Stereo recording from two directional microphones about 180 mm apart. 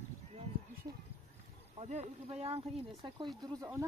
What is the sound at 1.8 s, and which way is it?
Speech, 35° right (ahead or behind).